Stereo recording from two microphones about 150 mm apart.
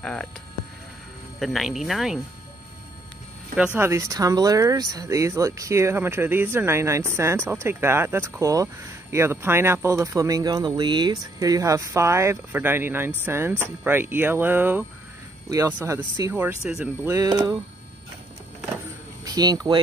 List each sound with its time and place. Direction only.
0.0 s speech: 5° left (ahead or behind)
1.4 s speech: centre (ahead or behind)
3.5 s speech: 10° right (ahead or behind)
16.6 s speech: 5° right (ahead or behind)
17.0 s speech: 25° right (ahead or behind)
19.2 s speech: 25° right (ahead or behind)